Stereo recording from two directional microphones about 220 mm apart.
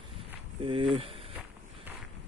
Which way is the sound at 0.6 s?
25° right (ahead or behind).